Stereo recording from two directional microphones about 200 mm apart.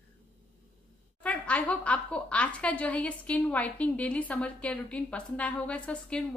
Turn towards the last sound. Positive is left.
turn(degrees=5)  # may be behind; listen again after turning